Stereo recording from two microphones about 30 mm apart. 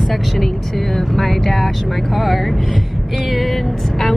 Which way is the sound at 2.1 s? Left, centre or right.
Centre.